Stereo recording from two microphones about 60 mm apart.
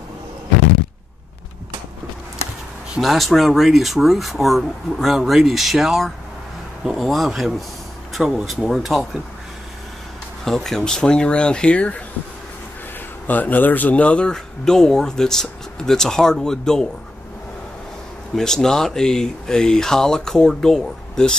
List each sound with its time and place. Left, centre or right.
3.0 s speech: centre
10.4 s speech: centre
13.3 s speech: left
14.3 s speech: centre
18.3 s speech: centre